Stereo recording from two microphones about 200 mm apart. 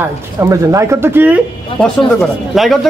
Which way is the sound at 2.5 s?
Centre (ahead or behind).